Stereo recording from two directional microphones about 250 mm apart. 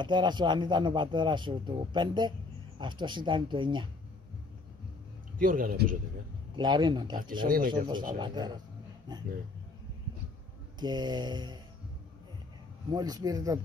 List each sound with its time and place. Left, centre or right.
0.0 s speech: centre
5.4 s a man's voice: right
6.5 s speech: centre
7.4 s a man's voice: right
8.2 s speech: centre
10.8 s speech: centre
12.9 s speech: centre